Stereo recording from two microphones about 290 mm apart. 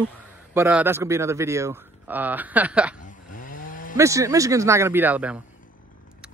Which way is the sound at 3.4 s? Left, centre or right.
Left.